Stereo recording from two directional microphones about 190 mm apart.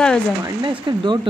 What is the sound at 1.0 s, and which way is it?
Speech, 25° right (ahead or behind).